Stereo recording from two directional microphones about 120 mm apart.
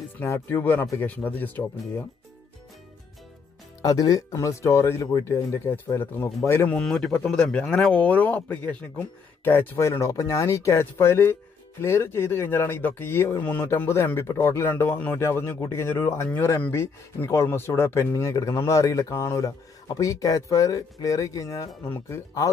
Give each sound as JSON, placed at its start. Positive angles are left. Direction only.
{"t": 0.2, "sound": "speech", "side_deg": 20}
{"t": 3.8, "sound": "speech", "side_deg": 30}
{"t": 6.8, "sound": "speech", "side_deg": 5}